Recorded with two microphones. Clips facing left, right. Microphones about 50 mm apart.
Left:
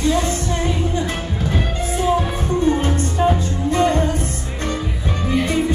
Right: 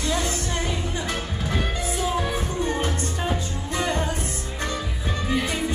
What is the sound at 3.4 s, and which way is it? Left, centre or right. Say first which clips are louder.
Music: left 9 dB; left.